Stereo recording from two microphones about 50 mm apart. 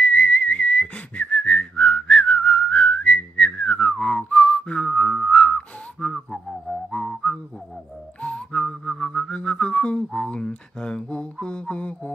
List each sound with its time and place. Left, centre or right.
0.0 s whistling: left
6.1 s a sound: centre
7.3 s music: left
8.2 s whistling: centre
10.1 s a sound: centre
11.0 s mantra: centre